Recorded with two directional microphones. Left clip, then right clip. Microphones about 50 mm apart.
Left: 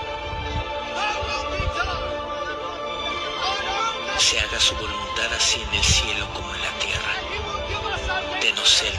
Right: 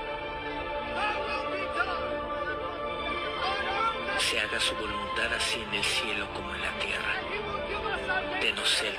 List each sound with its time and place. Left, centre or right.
3.4 s music: right
5.2 s speech: right
8.1 s music: right